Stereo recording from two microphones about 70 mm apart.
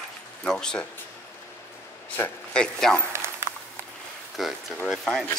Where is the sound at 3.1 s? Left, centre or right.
Right.